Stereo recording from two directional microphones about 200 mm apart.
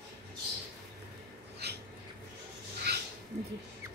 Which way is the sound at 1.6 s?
55° right (ahead or behind).